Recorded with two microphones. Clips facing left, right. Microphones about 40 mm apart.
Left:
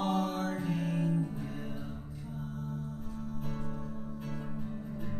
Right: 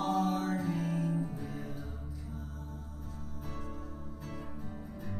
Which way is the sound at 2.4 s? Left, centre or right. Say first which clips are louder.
Left 7 dB; left.